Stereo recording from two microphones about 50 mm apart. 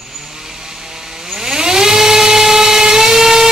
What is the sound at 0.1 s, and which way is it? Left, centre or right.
Vehicle, centre.